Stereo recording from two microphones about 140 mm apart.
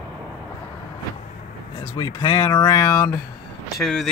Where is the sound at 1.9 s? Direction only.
35° left (ahead or behind).